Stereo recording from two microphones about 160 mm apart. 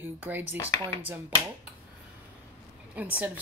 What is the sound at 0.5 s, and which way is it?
Speech, 15° left (ahead or behind).